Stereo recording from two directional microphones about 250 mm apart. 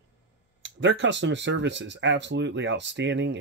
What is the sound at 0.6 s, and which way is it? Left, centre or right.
Speech, right.